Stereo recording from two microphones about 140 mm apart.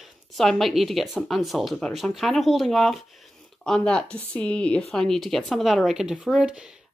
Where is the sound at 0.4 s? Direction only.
Centre (ahead or behind).